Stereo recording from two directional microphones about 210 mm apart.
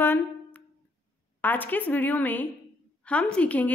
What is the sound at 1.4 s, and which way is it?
A woman's voice, 10° left (ahead or behind).